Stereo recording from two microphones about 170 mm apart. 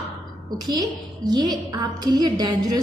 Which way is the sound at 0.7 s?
25° right (ahead or behind).